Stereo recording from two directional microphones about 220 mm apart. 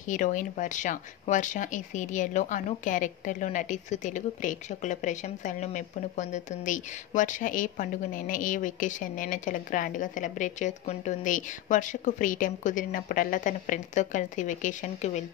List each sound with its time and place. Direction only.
0.0 s speech: 35° left (ahead or behind)